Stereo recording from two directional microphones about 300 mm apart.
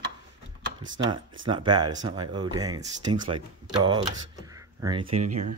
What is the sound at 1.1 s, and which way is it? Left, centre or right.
Speech, centre.